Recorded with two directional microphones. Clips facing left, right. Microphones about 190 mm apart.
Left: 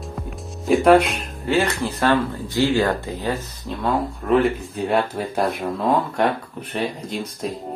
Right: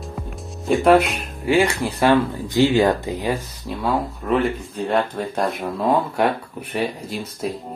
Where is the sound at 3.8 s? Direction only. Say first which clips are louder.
Left 1 dB; centre (ahead or behind).